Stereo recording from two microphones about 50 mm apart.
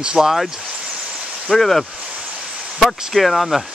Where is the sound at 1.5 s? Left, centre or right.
Centre.